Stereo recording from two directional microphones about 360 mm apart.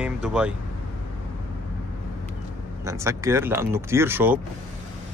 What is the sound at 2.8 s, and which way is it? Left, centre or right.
Speech, centre.